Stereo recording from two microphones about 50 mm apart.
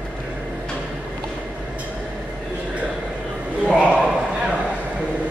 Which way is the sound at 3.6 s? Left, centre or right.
Centre.